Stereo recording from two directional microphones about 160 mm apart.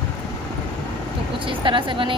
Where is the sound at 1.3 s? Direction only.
30° right (ahead or behind).